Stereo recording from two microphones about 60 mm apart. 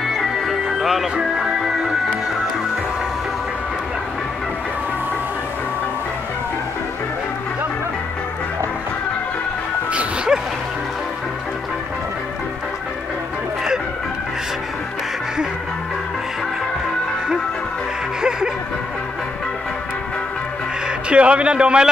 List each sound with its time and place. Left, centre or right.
0.0 s music: centre
9.9 s bow-wow: centre
21.1 s a sound: centre